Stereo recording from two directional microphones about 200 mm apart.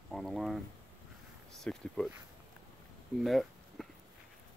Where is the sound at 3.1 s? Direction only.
Centre (ahead or behind).